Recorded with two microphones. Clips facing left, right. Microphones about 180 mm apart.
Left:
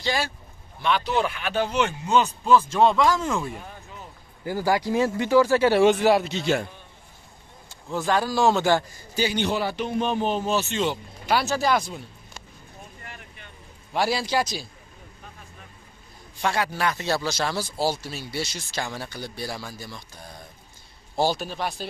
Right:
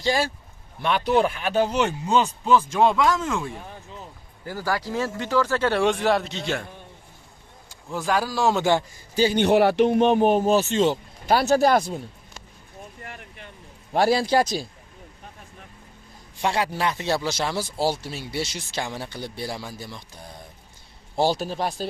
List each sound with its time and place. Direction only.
0.0 s speech: 40° right (ahead or behind)
0.8 s speech: 50° right (ahead or behind); by 2.2 s 35° right (ahead or behind)
2.2 s speech: 15° right (ahead or behind)
3.1 s speech: centre (ahead or behind)
4.5 s speech: 15° left (ahead or behind)
7.9 s speech: 5° right (ahead or behind)
9.3 s speech: 60° right (ahead or behind); by 11.4 s 40° right (ahead or behind)
11.4 s speech: 55° right (ahead or behind)
13.9 s a man's voice: 45° right (ahead or behind)
16.3 s speech: 25° right (ahead or behind)
21.4 s speech: 35° right (ahead or behind)